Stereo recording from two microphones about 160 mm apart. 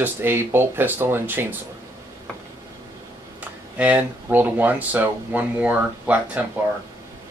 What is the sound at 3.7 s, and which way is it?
Speech, 10° right (ahead or behind).